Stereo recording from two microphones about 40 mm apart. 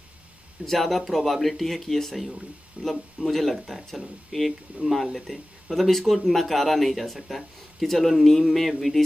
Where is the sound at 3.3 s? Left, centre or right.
Centre.